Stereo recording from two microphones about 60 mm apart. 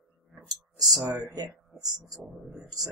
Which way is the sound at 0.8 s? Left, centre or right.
Centre.